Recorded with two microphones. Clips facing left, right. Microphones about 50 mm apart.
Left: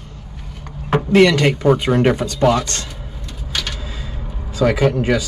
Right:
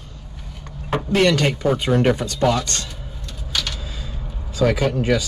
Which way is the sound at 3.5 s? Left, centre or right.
Centre.